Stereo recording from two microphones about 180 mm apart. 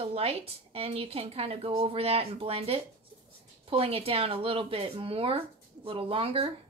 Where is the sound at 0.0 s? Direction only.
35° right (ahead or behind).